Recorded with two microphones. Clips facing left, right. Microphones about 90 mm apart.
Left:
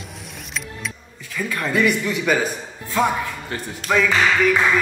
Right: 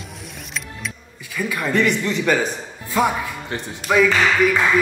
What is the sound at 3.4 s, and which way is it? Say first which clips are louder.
Speech: right 1 dB; 20° right (ahead or behind).